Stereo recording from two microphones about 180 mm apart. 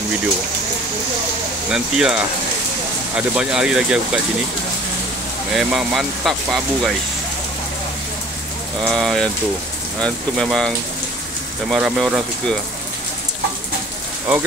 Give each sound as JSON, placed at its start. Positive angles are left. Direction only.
{"t": 1.7, "sound": "speech", "side_deg": -5}
{"t": 3.2, "sound": "speech", "side_deg": -5}
{"t": 5.5, "sound": "speech", "side_deg": -5}
{"t": 8.8, "sound": "speech", "side_deg": 5}
{"t": 11.7, "sound": "speech", "side_deg": 0}